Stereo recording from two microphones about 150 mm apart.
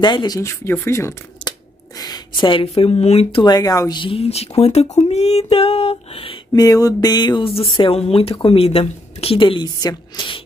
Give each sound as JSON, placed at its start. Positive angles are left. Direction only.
{"t": 0.0, "sound": "speech", "side_deg": 30}
{"t": 1.4, "sound": "scissors", "side_deg": 10}
{"t": 2.0, "sound": "speech", "side_deg": 25}
{"t": 3.4, "sound": "speech", "side_deg": 25}
{"t": 4.0, "sound": "speech", "side_deg": 40}